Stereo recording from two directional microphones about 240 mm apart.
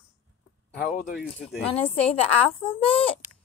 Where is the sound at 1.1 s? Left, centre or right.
Centre.